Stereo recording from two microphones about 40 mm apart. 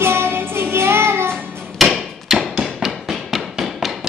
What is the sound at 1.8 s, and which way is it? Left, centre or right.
Hammer, centre.